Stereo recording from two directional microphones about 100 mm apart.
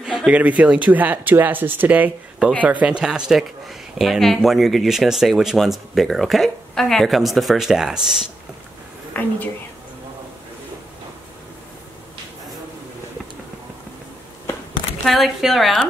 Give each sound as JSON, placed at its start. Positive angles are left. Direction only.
{"t": 0.0, "sound": "speech", "side_deg": -5}
{"t": 9.1, "sound": "a woman's voice", "side_deg": 15}
{"t": 15.0, "sound": "speech", "side_deg": 0}